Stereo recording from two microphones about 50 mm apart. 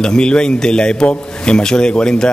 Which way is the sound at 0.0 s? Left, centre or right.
Centre.